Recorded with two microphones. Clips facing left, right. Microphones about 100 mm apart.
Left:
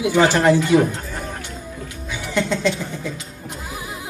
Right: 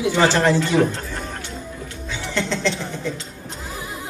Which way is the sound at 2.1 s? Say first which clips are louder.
Left 3 dB; 15° left (ahead or behind).